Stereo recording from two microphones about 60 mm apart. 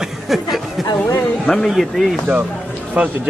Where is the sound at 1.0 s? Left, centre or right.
Left.